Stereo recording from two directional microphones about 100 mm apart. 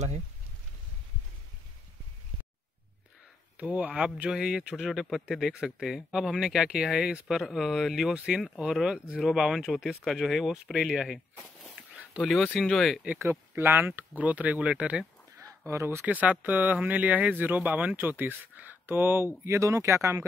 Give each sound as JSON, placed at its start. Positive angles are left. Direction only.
{"t": 3.5, "sound": "speech", "side_deg": -15}
{"t": 11.9, "sound": "a sound", "side_deg": -10}
{"t": 12.2, "sound": "speech", "side_deg": 0}
{"t": 13.2, "sound": "speech", "side_deg": -25}
{"t": 15.3, "sound": "a sound", "side_deg": -30}
{"t": 16.1, "sound": "speech", "side_deg": -15}